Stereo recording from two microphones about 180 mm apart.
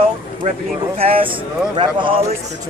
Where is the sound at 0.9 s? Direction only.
30° right (ahead or behind).